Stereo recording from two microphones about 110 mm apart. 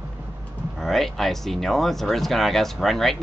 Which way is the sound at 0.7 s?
Centre (ahead or behind).